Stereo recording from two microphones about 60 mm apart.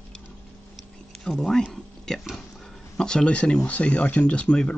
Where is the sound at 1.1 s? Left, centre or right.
Centre.